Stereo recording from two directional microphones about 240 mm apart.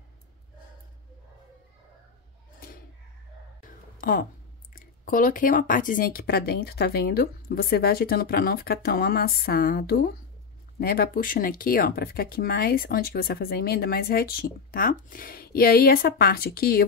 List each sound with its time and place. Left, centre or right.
4.0 s speech: left